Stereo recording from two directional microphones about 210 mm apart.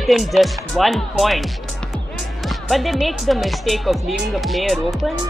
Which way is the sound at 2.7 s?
Centre (ahead or behind).